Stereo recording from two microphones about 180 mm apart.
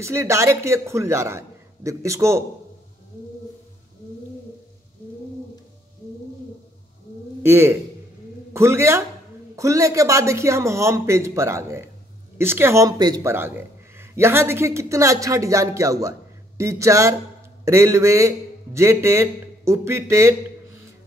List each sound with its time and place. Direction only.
0.0 s a man's voice: 15° right (ahead or behind)
7.4 s a man's voice: 15° right (ahead or behind)